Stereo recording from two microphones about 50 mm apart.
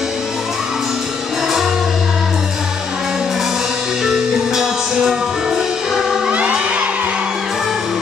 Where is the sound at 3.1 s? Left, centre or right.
Centre.